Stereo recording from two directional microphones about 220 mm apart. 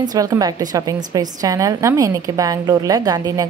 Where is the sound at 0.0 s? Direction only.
15° right (ahead or behind).